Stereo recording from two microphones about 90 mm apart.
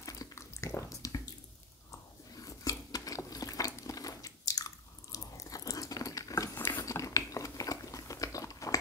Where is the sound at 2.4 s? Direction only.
40° left (ahead or behind).